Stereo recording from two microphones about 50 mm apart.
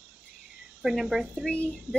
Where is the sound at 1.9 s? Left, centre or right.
Right.